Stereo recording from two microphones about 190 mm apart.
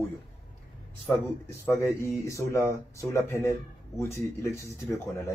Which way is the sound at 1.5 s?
15° left (ahead or behind).